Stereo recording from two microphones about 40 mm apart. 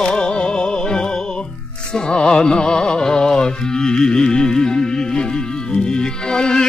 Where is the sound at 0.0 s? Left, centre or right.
Left.